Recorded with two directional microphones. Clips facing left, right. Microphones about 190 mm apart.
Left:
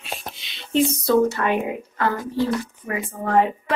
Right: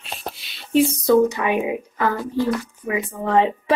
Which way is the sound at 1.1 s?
15° right (ahead or behind).